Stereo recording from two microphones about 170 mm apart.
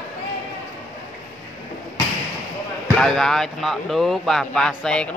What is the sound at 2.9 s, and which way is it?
Speech, centre (ahead or behind).